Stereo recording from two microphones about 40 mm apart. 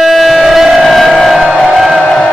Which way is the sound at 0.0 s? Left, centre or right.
Centre.